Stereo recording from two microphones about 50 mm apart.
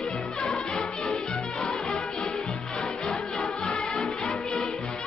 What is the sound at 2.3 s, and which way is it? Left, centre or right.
Music, centre.